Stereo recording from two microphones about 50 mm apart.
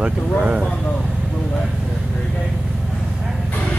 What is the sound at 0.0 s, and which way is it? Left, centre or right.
Speech, right.